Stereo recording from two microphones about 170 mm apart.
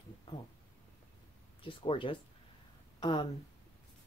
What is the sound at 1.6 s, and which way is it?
Speech, 30° left (ahead or behind).